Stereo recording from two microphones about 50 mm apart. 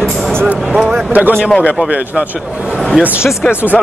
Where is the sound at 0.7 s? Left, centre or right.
Centre.